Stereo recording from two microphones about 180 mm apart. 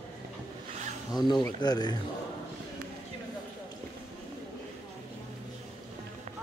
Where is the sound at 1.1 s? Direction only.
25° left (ahead or behind).